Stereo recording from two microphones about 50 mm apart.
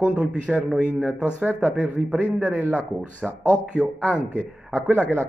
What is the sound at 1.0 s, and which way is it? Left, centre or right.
Speech, right.